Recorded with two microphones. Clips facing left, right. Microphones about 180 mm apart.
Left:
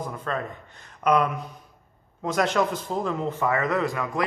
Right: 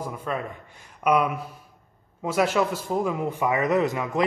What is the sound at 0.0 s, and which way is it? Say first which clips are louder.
Speech: even; 10° right (ahead or behind).